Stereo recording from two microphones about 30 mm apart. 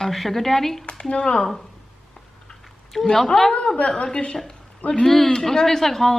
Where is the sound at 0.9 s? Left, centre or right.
Left.